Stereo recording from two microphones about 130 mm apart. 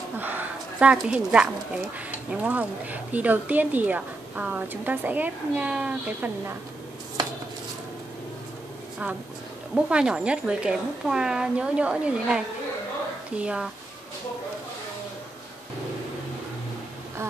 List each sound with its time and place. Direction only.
0.2 s speech: 15° right (ahead or behind)
9.8 s speech: 5° right (ahead or behind)